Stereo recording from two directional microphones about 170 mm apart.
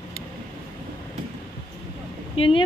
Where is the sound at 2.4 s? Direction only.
30° left (ahead or behind).